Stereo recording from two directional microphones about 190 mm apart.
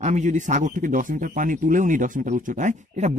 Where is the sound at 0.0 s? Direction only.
40° right (ahead or behind).